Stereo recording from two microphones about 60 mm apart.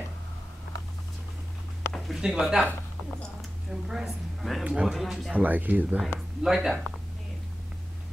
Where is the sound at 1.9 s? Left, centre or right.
Centre.